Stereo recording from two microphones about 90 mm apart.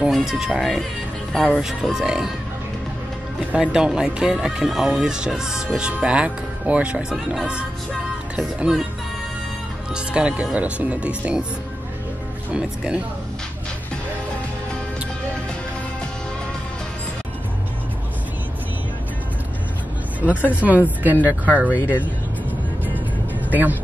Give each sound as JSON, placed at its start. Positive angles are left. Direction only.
{"t": 0.0, "sound": "speech", "side_deg": -5}
{"t": 1.6, "sound": "speech", "side_deg": -5}
{"t": 3.5, "sound": "speech", "side_deg": -10}
{"t": 9.9, "sound": "speech", "side_deg": -10}
{"t": 12.5, "sound": "speech", "side_deg": -10}
{"t": 20.6, "sound": "speech", "side_deg": -15}
{"t": 23.5, "sound": "speech", "side_deg": -20}